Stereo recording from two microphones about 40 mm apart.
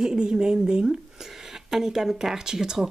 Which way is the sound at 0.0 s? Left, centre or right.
Centre.